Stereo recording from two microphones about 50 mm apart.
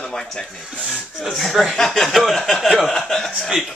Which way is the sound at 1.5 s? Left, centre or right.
Centre.